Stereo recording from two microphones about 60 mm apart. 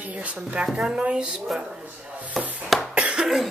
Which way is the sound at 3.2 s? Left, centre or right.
Centre.